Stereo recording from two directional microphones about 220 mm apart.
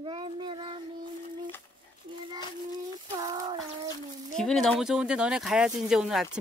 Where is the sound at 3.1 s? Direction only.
15° right (ahead or behind).